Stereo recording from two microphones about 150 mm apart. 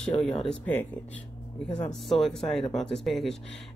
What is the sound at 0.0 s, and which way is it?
Speech, 5° left (ahead or behind).